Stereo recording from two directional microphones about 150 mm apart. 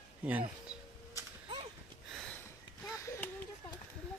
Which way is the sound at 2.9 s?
20° left (ahead or behind).